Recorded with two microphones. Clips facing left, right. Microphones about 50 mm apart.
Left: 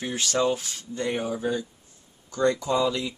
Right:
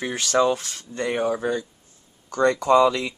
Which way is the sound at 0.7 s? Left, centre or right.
Right.